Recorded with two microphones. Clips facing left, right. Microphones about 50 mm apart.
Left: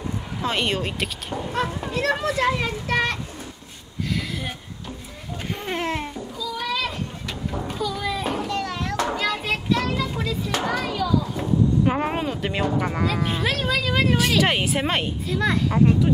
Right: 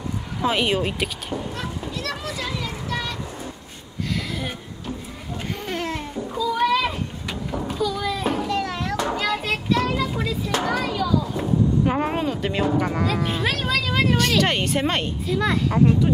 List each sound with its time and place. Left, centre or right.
0.4 s speech: centre
1.5 s a child's voice: left
5.7 s speech: left
6.7 s a sound: centre
7.5 s a sound: centre
9.1 s children playing: centre
10.7 s a child's voice: centre